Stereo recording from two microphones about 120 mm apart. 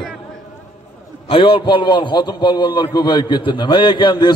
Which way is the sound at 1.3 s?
45° left (ahead or behind).